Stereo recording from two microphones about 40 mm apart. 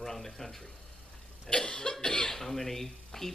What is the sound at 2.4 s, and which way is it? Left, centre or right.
Speech, centre.